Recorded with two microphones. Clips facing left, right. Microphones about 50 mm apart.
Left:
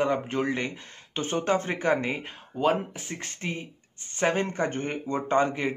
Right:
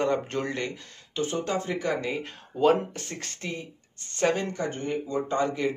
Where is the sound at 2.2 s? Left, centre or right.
Centre.